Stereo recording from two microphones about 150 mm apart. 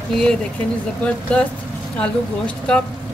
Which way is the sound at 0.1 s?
5° left (ahead or behind).